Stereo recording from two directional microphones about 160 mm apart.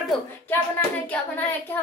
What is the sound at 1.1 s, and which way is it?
Hands, 10° left (ahead or behind).